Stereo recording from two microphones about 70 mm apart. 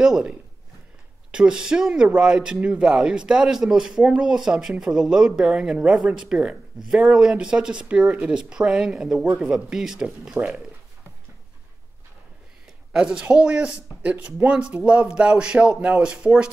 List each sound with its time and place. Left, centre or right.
0.0 s speech: centre
12.9 s speech: centre